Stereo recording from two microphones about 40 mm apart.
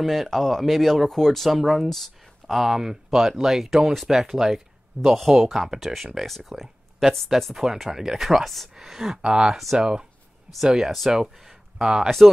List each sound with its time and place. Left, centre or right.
0.0 s speech: centre
9.1 s speech: right
11.1 s speech: centre